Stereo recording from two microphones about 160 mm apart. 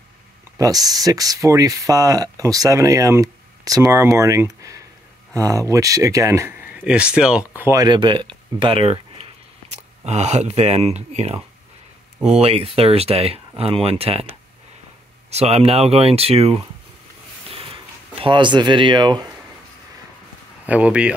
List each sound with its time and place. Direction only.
0.6 s speech: 20° right (ahead or behind)
7.8 s speech: 30° right (ahead or behind)
15.3 s speech: 40° right (ahead or behind)
17.5 s a sound: 35° right (ahead or behind)
20.6 s speech: 10° right (ahead or behind)